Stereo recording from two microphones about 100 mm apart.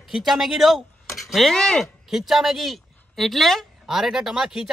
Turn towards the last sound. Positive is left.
turn(degrees=-5)  # may be behind; listen again after turning